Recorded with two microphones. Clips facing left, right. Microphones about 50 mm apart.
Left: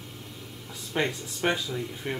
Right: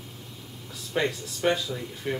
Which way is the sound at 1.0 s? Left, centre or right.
Centre.